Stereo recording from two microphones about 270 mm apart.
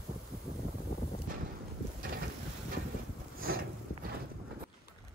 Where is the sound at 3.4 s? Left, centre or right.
Right.